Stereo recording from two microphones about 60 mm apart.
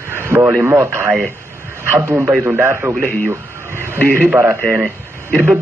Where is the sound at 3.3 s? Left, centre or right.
Right.